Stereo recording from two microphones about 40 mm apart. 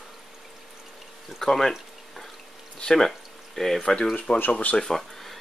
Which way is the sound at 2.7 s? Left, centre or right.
Centre.